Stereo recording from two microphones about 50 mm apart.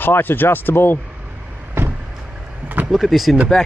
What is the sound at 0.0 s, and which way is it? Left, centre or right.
Speech, left.